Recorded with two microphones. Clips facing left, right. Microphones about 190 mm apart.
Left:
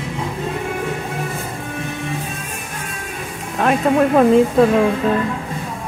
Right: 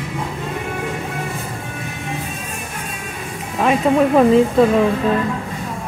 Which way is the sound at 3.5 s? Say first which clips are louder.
Even; centre (ahead or behind).